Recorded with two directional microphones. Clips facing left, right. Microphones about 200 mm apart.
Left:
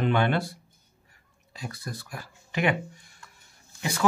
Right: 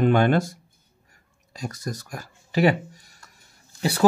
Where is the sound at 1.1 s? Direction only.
45° right (ahead or behind).